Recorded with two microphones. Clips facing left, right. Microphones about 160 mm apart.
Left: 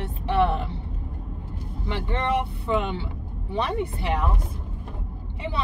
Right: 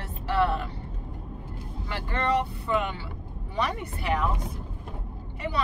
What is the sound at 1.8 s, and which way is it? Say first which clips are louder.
Speech: left 2 dB; 20° left (ahead or behind).